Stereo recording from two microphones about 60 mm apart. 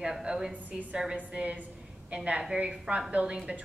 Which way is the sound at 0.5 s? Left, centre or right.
Right.